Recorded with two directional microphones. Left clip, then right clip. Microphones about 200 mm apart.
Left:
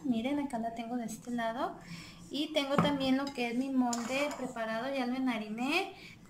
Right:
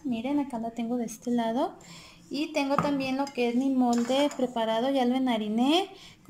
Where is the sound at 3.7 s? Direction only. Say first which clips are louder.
Right 6 dB; 30° right (ahead or behind).